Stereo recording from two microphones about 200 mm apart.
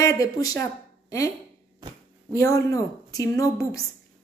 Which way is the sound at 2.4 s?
15° left (ahead or behind).